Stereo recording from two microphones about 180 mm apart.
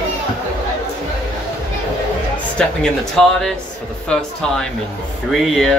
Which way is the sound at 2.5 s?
5° left (ahead or behind).